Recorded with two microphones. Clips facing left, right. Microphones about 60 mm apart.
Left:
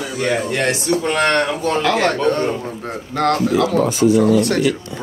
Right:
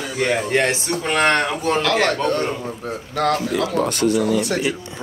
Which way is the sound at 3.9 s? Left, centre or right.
Right.